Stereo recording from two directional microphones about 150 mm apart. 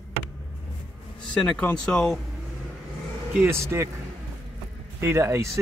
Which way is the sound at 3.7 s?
15° right (ahead or behind).